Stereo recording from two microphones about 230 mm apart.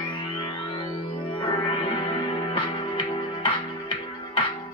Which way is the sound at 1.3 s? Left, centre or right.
Left.